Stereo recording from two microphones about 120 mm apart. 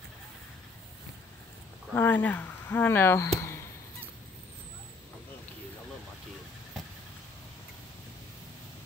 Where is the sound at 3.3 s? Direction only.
20° left (ahead or behind).